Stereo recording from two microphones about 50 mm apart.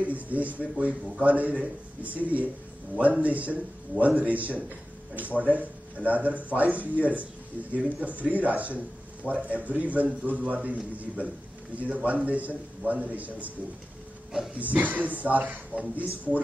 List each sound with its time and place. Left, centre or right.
0.0 s a man's voice: right
14.5 s speech: right